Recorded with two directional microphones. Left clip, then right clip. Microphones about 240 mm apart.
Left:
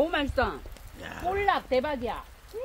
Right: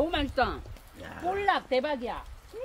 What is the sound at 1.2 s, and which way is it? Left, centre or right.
Speech, centre.